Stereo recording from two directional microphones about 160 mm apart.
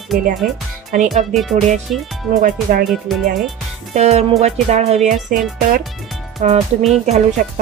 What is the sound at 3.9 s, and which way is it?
Speech, 40° right (ahead or behind).